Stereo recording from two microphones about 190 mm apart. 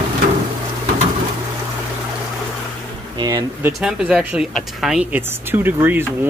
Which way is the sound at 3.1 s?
20° right (ahead or behind).